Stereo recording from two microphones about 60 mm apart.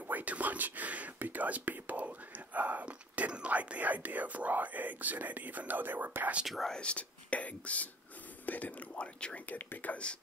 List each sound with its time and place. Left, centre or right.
0.0 s speech: right
6.4 s speech: centre
6.7 s speech: centre